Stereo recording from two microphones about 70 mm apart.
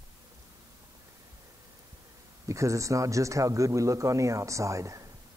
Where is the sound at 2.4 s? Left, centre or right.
Right.